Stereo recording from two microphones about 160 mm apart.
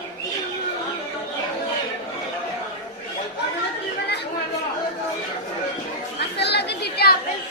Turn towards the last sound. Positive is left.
turn(degrees=85)